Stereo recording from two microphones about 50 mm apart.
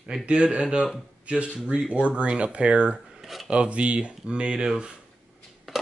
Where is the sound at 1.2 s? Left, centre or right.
Right.